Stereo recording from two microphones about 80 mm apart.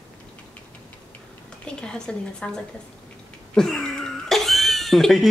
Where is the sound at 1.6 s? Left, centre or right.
Centre.